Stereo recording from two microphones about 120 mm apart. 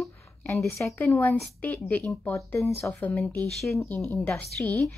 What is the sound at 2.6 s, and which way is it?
Speech, centre (ahead or behind).